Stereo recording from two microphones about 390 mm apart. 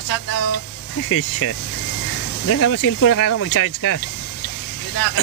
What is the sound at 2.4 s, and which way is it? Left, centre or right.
Speech, left.